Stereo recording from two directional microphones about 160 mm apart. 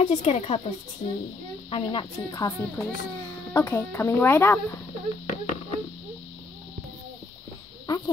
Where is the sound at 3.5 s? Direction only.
15° left (ahead or behind).